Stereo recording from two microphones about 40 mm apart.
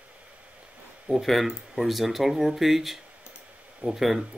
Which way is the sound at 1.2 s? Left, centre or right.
Centre.